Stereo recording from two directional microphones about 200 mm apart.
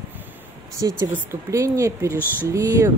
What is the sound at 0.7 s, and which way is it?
Speech, 15° right (ahead or behind).